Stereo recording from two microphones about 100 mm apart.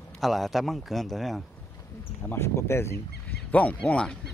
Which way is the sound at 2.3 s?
25° left (ahead or behind).